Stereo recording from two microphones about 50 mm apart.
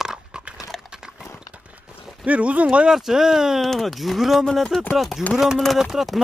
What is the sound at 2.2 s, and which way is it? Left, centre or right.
Speech, right.